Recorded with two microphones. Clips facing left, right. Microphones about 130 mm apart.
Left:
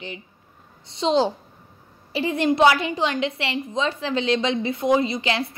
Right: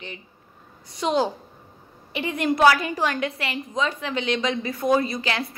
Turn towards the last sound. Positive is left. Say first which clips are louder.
# left 2 dB
turn(degrees=25)  # may be behind; listen again after turning